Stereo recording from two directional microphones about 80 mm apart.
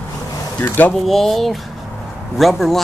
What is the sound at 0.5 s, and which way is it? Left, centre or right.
Speech, left.